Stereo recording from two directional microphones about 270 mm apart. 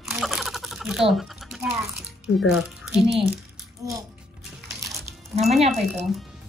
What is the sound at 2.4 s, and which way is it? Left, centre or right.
Speech, centre.